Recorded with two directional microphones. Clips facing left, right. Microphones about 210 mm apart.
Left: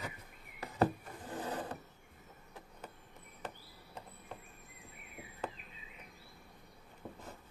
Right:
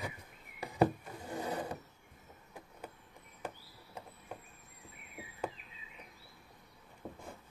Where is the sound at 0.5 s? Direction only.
10° right (ahead or behind).